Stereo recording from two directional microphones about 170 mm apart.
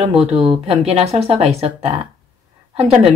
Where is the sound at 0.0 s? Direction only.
35° right (ahead or behind).